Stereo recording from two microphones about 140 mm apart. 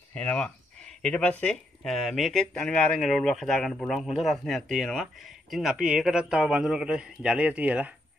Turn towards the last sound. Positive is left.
turn(degrees=-10)  # may be behind; listen again after turning